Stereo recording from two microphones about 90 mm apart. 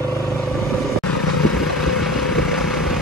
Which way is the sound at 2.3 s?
Centre (ahead or behind).